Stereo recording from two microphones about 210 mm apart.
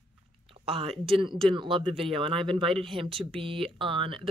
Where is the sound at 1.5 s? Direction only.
25° right (ahead or behind).